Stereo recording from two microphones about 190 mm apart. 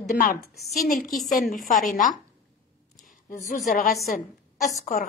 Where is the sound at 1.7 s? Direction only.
45° left (ahead or behind).